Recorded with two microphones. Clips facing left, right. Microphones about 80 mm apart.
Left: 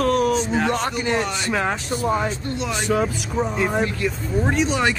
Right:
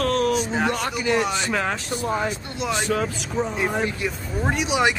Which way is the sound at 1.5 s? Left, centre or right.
Centre.